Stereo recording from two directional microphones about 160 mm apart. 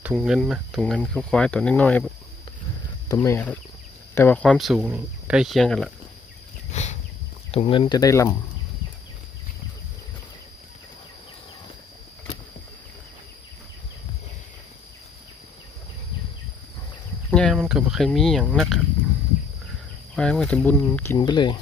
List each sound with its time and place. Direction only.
0.0 s speech: 5° right (ahead or behind); by 2.0 s 10° left (ahead or behind)
3.1 s speech: 15° left (ahead or behind)
6.7 s a sound: 45° left (ahead or behind)
7.5 s speech: 35° left (ahead or behind); by 8.4 s 20° left (ahead or behind)
17.3 s cricket: 5° left (ahead or behind)
17.6 s speech: 5° right (ahead or behind)
20.2 s speech: 5° left (ahead or behind)
21.2 s speech: 30° left (ahead or behind)